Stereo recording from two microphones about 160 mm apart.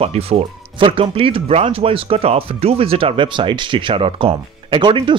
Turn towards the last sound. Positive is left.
turn(degrees=-30)  # may be behind; listen again after turning